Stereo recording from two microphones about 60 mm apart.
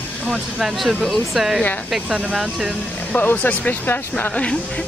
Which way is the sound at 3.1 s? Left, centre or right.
Left.